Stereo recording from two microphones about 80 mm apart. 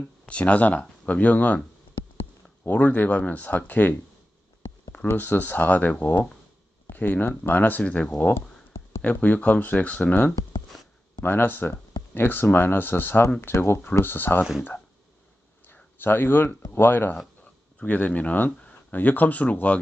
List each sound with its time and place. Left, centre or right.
0.3 s speech: centre
2.6 s speech: left
5.0 s speech: left
15.6 s a sound: left
16.7 s speech: left